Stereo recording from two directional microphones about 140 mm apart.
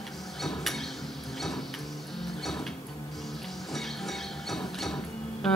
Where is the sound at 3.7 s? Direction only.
Centre (ahead or behind).